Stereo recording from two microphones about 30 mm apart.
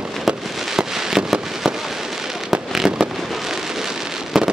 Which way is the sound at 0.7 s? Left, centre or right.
Centre.